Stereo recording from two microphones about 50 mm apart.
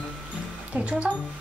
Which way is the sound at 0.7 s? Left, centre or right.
Right.